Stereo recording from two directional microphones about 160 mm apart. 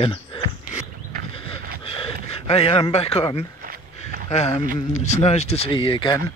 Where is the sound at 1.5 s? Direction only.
35° left (ahead or behind).